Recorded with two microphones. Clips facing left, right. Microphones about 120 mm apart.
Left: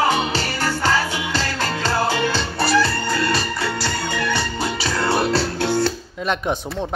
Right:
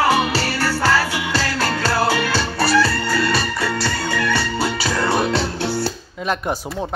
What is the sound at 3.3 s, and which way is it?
Music, centre (ahead or behind).